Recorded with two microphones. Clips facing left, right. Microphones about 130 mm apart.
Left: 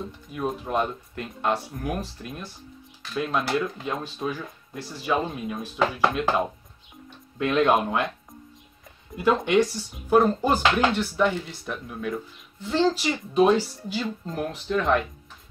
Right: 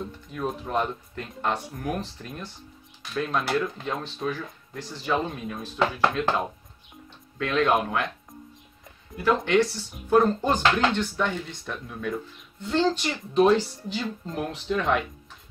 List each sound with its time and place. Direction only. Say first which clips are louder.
0.3 s speech: left 1 dB; 10° left (ahead or behind)
7.3 s speech: left 2 dB; 20° left (ahead or behind)
9.1 s speech: left 1 dB; 20° left (ahead or behind); by 15.0 s centre (ahead or behind)